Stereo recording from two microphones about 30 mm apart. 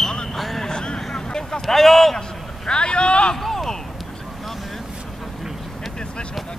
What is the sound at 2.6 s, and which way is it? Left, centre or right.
Speech, left.